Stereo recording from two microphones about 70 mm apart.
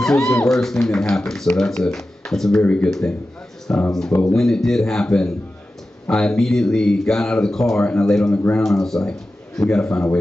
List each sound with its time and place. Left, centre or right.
0.0 s speech: centre
2.6 s speech: centre
2.9 s speech: centre